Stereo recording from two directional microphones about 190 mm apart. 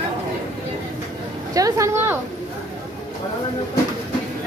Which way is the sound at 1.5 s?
15° right (ahead or behind).